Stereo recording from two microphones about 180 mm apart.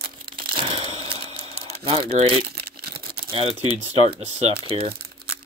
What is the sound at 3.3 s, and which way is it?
Speech, 30° right (ahead or behind).